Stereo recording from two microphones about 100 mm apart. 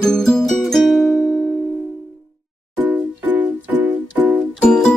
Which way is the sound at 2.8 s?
15° right (ahead or behind).